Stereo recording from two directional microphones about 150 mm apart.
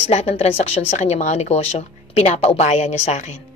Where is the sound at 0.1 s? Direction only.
45° left (ahead or behind).